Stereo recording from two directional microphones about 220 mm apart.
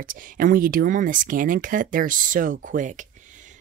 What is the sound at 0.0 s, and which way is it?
Speech, 40° right (ahead or behind).